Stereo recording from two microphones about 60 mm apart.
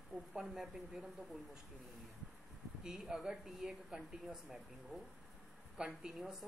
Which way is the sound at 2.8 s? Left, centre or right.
Centre.